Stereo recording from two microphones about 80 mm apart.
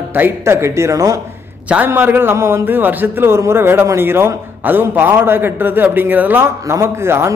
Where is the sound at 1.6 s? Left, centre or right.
Right.